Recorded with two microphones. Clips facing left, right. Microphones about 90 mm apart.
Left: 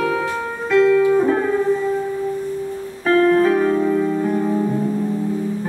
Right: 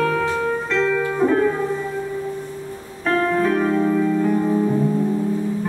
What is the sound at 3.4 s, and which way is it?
Music, 5° left (ahead or behind).